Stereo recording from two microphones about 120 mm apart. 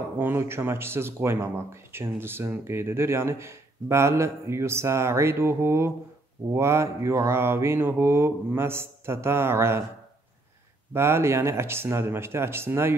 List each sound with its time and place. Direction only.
0.2 s speech: 20° right (ahead or behind)
10.9 s speech: 20° right (ahead or behind)